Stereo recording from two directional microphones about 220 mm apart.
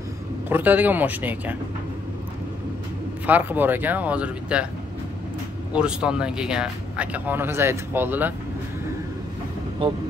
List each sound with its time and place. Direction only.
0.5 s speech: 10° right (ahead or behind)
3.3 s speech: 10° right (ahead or behind)
5.7 s speech: 5° right (ahead or behind)
9.8 s speech: 25° right (ahead or behind)